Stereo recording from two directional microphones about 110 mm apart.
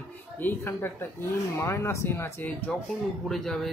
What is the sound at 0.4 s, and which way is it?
Speech, 20° left (ahead or behind).